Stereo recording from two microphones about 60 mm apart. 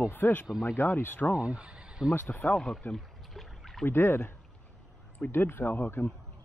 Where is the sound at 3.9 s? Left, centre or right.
Left.